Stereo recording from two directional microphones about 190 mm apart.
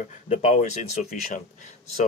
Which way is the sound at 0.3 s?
40° left (ahead or behind).